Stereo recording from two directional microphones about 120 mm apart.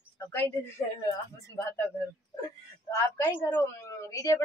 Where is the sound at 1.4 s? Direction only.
20° left (ahead or behind).